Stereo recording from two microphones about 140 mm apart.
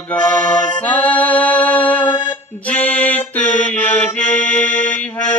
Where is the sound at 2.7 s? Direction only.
10° left (ahead or behind).